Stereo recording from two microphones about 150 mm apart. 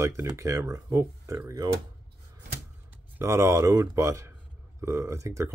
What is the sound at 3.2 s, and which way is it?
Speech, 20° right (ahead or behind).